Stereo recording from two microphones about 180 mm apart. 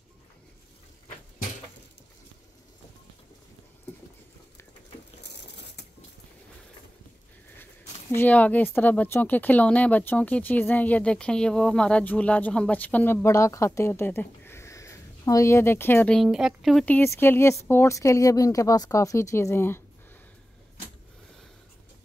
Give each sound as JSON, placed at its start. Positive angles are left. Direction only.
{"t": 5.2, "sound": "a sound", "side_deg": 70}
{"t": 8.1, "sound": "speech", "side_deg": 10}
{"t": 16.2, "sound": "speech", "side_deg": -5}